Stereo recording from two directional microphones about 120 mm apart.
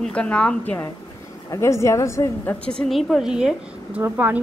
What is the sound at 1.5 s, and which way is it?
A woman's voice, 25° left (ahead or behind).